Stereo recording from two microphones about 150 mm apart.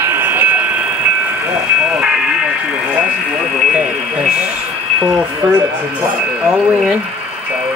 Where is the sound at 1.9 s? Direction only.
5° right (ahead or behind).